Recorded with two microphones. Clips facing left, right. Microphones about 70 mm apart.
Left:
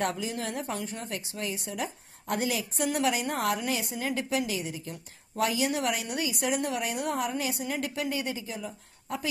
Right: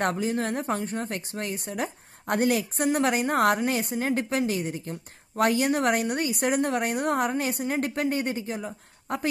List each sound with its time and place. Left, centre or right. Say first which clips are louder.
0.0 s speech: right 5 dB; right